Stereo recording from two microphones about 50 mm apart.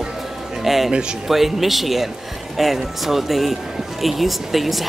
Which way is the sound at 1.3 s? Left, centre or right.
Centre.